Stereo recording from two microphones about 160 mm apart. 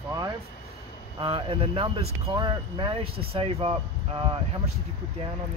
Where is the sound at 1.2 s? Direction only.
35° right (ahead or behind).